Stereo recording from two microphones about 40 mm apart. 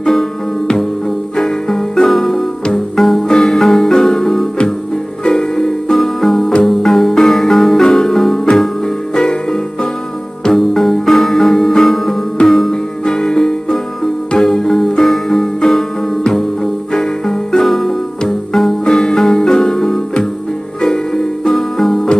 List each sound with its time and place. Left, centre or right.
0.0 s music: centre
1.3 s music: centre
3.3 s music: centre
10.5 s music: centre
13.0 s music: centre
16.9 s music: centre
18.9 s music: centre